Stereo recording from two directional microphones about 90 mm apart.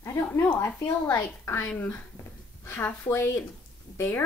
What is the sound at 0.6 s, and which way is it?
Speech, 25° left (ahead or behind).